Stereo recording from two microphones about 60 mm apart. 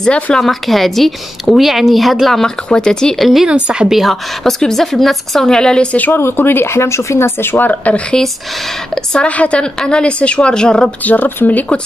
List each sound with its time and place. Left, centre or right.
0.0 s speech: centre
3.4 s a woman's voice: centre
3.9 s speech: centre
6.1 s speech: left
8.9 s a woman's voice: centre
11.1 s speech: left